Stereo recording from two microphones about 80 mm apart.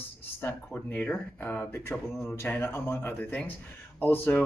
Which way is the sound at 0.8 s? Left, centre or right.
Left.